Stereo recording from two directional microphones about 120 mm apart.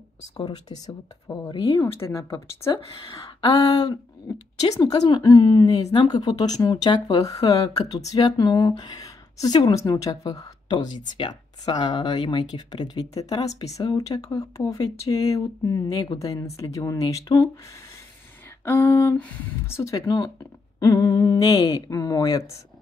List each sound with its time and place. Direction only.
0.5 s speech: 30° left (ahead or behind)
3.3 s a sound: 45° left (ahead or behind)
4.7 s speech: 35° left (ahead or behind)
18.6 s speech: 20° left (ahead or behind)